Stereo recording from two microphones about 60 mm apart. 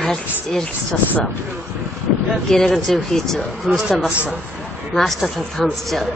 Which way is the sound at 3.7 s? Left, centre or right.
Centre.